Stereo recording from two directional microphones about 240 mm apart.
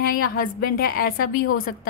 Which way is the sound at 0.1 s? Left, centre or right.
Left.